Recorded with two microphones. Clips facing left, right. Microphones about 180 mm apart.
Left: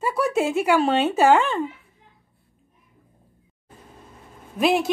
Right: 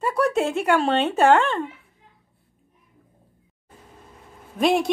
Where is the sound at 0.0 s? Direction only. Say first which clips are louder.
Right 1 dB; 5° left (ahead or behind).